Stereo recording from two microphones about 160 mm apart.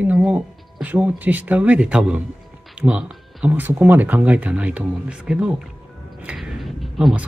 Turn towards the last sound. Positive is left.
turn(degrees=0)  # may be behind; listen again after turning